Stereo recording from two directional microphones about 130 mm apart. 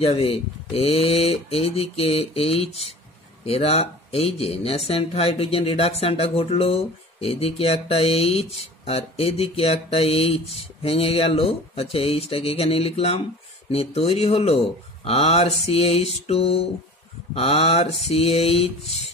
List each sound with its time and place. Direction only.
0.0 s speech: 50° left (ahead or behind)